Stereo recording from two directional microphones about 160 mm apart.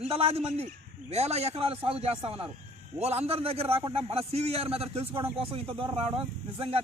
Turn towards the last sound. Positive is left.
turn(degrees=-35)  # may be behind; listen again after turning